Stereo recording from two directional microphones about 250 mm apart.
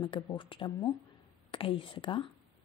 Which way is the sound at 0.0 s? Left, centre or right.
Centre.